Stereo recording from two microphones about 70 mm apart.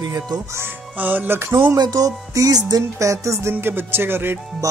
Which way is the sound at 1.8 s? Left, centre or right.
Right.